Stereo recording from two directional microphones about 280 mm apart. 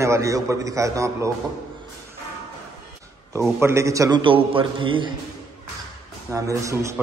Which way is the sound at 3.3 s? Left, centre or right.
Centre.